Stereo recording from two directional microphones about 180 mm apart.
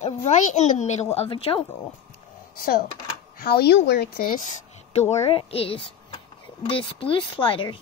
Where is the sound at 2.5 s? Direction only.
55° left (ahead or behind).